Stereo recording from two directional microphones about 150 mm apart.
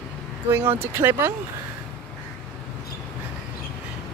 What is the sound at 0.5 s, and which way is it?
Speech, 15° right (ahead or behind).